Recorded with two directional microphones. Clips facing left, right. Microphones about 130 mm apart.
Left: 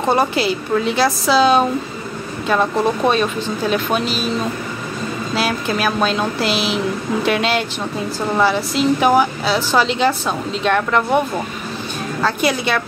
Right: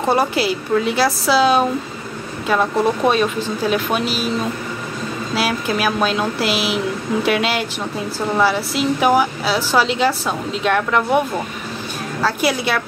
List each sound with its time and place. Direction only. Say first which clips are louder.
0.0 s a woman's voice: left 1 dB; 5° right (ahead or behind)
5.3 s a woman's voice: even; 10° right (ahead or behind)